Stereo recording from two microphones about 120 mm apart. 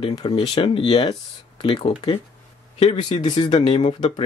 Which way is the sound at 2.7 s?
70° left (ahead or behind).